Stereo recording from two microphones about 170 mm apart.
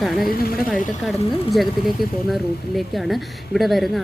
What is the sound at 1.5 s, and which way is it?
Speech, centre (ahead or behind).